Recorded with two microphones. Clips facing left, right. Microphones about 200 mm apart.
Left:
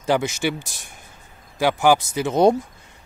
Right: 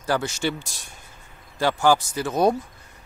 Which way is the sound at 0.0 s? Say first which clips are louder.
Left 3 dB; 20° left (ahead or behind).